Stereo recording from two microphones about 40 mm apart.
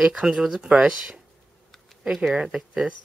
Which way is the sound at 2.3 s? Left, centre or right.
Centre.